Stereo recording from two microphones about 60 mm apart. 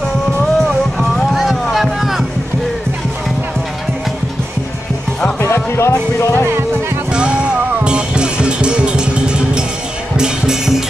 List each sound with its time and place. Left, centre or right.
0.9 s vehicle: centre
5.4 s music: left
7.1 s music: centre